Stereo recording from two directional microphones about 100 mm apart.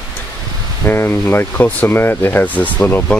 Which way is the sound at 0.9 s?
20° left (ahead or behind).